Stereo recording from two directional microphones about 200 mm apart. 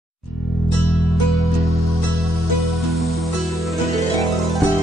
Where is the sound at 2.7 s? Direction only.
Centre (ahead or behind).